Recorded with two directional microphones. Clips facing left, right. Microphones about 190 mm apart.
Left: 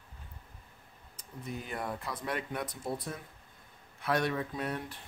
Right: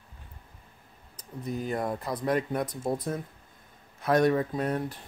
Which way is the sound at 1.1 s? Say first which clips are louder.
Right 7 dB; 40° right (ahead or behind).